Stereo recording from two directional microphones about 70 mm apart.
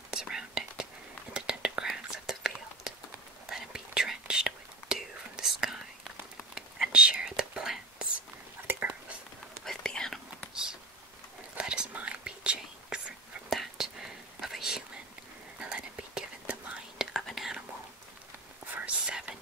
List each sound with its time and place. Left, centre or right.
0.1 s whispering: centre
8.6 s whispering: right
9.7 s whispering: centre
10.5 s a sound: centre
11.5 s whispering: centre
13.5 s whispering: centre
15.6 s whispering: centre
17.2 s whispering: centre
18.9 s whispering: centre